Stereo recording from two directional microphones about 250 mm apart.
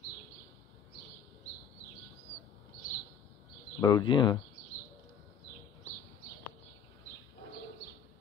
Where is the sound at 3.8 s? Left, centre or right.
Centre.